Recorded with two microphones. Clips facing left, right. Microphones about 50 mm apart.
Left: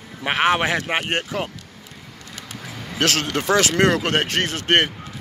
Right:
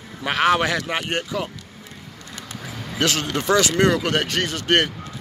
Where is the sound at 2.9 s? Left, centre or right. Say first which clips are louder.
Left 1 dB; left.